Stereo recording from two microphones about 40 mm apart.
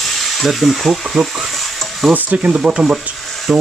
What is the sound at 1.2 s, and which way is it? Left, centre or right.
Speech, centre.